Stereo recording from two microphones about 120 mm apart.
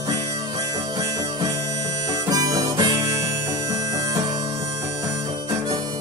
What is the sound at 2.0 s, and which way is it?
Harmonica, 30° right (ahead or behind).